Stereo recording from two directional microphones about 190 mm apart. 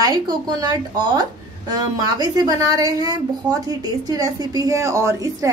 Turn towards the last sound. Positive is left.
turn(degrees=-15)  # may be behind; listen again after turning